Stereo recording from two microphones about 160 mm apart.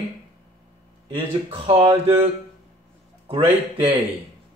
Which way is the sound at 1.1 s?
40° right (ahead or behind).